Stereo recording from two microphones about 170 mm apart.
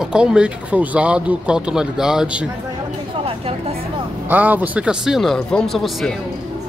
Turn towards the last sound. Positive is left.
turn(degrees=0)  # may be behind; listen again after turning